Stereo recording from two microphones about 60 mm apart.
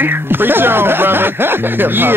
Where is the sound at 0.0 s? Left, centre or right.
Right.